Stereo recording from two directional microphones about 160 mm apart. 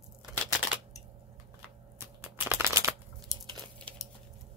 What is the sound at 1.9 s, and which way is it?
Shuffling cards, 15° right (ahead or behind).